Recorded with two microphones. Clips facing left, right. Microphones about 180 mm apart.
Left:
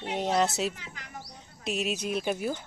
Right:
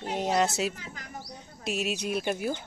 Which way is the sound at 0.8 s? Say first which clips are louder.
Right 3 dB; 45° right (ahead or behind).